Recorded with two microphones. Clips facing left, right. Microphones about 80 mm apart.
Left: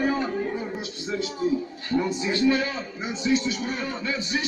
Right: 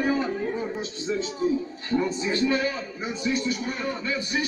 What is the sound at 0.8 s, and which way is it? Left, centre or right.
Speech, left.